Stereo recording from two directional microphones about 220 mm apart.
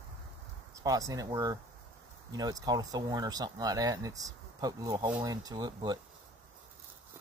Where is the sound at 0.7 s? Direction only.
15° right (ahead or behind).